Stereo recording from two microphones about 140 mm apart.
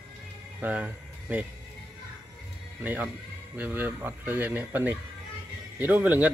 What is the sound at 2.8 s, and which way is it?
Speech, 10° right (ahead or behind).